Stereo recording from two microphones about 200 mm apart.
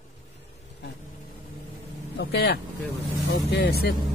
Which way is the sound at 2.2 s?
55° left (ahead or behind).